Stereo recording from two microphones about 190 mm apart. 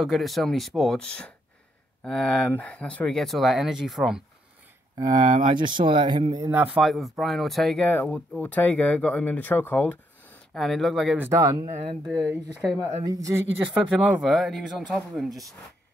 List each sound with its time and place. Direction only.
0.0 s speech: centre (ahead or behind)
4.9 s speech: 20° right (ahead or behind)
6.5 s speech: 5° right (ahead or behind)
11.2 s speech: 15° right (ahead or behind)
11.6 s speech: 35° right (ahead or behind)
13.0 s speech: 20° right (ahead or behind)
14.2 s speech: centre (ahead or behind)